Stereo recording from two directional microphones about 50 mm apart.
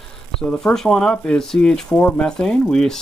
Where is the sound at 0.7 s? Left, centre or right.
Centre.